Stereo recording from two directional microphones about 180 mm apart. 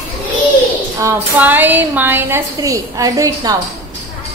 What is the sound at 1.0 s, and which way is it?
A woman's voice, 10° right (ahead or behind).